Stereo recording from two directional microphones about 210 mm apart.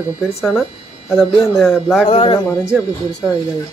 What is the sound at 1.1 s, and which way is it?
Speech, centre (ahead or behind).